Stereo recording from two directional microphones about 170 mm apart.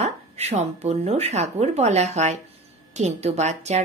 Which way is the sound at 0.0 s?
40° right (ahead or behind).